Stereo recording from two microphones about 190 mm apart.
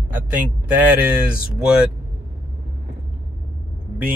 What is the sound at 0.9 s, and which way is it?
Speech, 5° right (ahead or behind).